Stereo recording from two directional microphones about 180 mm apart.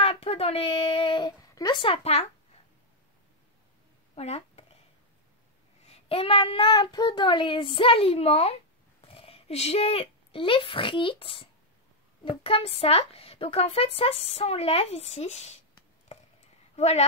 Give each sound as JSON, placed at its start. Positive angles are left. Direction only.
{"t": 0.0, "sound": "speech", "side_deg": 35}
{"t": 4.1, "sound": "a sound", "side_deg": 35}
{"t": 5.9, "sound": "child singing", "side_deg": 35}
{"t": 9.0, "sound": "speech", "side_deg": 30}
{"t": 16.7, "sound": "a woman's voice", "side_deg": 35}